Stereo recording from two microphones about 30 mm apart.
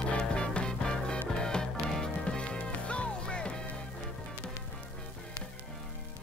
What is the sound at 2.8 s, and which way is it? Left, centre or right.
Music, left.